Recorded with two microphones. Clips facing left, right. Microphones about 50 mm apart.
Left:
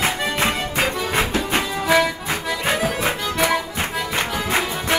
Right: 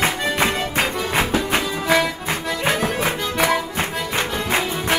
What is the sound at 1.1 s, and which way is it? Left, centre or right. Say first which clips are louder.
Music: right 3 dB; right.